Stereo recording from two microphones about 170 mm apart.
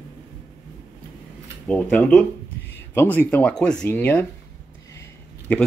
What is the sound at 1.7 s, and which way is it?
Speech, 5° left (ahead or behind).